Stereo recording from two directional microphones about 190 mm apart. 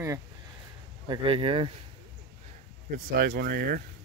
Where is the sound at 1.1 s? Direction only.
25° right (ahead or behind).